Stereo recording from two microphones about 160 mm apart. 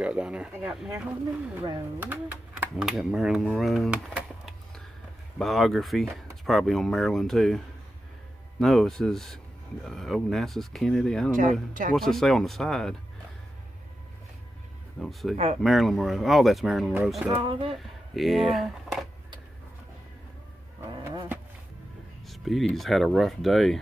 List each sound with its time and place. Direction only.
0.0 s speech: 5° right (ahead or behind)
15.0 s speech: centre (ahead or behind)
15.3 s speech: 45° right (ahead or behind)
15.6 s speech: centre (ahead or behind)
17.5 s speech: 30° right (ahead or behind)
17.7 s speech: centre (ahead or behind)
22.2 s speech: centre (ahead or behind)